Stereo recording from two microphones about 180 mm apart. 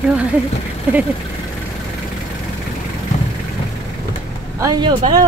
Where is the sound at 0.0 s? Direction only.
5° right (ahead or behind).